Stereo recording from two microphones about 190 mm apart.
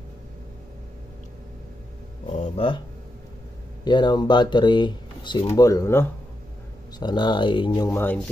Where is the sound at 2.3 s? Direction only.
35° left (ahead or behind).